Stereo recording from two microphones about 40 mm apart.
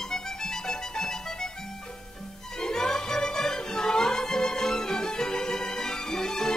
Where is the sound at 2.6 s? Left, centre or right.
Centre.